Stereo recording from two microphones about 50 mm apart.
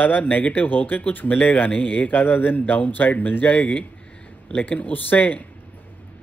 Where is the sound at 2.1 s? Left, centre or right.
Left.